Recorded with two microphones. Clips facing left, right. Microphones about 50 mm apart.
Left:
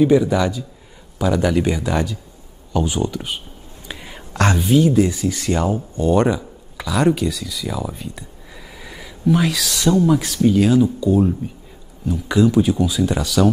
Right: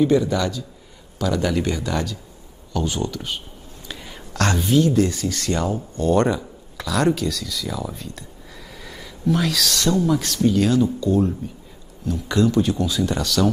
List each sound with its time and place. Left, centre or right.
0.0 s speech: centre
3.8 s whispering: centre
4.6 s speech: centre
8.7 s a sound: centre
10.0 s speech: centre